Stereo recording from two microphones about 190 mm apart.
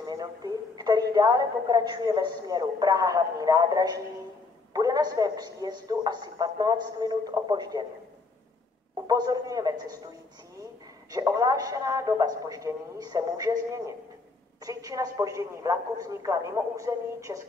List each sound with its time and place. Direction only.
0.0 s a woman's voice: 20° right (ahead or behind)
9.0 s a woman's voice: 20° right (ahead or behind)